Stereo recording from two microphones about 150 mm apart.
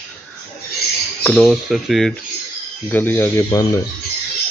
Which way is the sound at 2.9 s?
10° left (ahead or behind).